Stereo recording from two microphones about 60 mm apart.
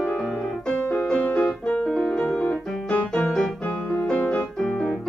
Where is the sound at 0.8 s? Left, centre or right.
Left.